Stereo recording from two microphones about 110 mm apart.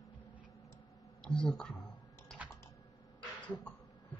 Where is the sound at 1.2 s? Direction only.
5° left (ahead or behind).